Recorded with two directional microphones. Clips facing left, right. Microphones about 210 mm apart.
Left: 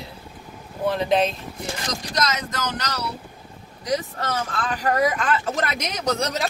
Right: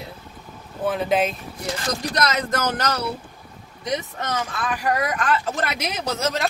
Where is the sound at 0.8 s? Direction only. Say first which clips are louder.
Left 1 dB; 5° right (ahead or behind).